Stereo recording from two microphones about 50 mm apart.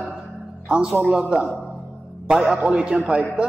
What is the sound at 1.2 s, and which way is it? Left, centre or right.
Speech, centre.